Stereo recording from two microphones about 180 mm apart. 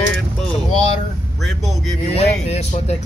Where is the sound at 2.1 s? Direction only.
35° left (ahead or behind).